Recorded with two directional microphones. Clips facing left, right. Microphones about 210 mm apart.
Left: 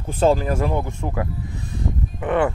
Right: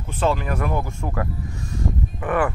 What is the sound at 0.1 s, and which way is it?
Speech, 35° left (ahead or behind).